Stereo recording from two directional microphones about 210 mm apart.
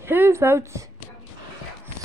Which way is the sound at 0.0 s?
10° right (ahead or behind).